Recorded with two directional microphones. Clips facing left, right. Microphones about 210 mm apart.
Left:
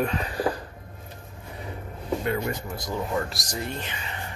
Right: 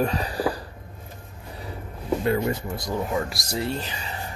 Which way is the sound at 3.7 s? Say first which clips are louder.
Right 4 dB; 35° right (ahead or behind).